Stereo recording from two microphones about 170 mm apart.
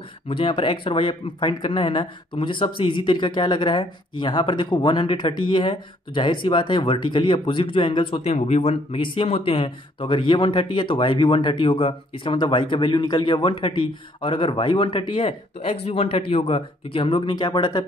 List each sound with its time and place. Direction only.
0.3 s speech: 30° left (ahead or behind)